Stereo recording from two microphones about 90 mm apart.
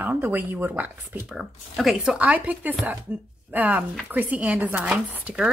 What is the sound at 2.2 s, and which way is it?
Speech, 15° right (ahead or behind).